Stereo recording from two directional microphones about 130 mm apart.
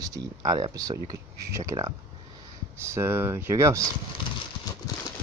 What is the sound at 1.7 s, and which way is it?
Speech, 40° right (ahead or behind).